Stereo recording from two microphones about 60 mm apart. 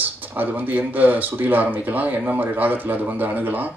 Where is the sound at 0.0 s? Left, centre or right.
Right.